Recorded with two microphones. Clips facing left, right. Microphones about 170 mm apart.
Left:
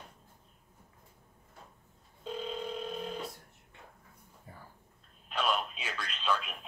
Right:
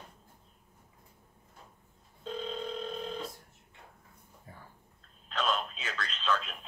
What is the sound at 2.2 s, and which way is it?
Telephone, 10° left (ahead or behind).